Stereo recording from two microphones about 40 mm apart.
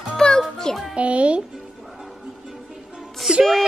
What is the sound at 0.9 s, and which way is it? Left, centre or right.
Music, right.